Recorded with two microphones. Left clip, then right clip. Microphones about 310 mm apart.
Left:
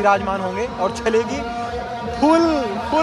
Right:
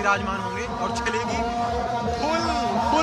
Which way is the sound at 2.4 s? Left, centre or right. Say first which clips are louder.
Left 5 dB; centre.